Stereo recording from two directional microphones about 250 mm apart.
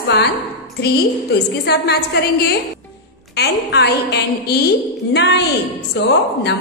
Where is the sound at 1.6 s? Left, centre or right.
Left.